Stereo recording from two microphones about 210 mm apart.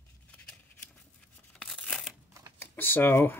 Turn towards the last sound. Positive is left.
turn(degrees=10)  # may be behind; listen again after turning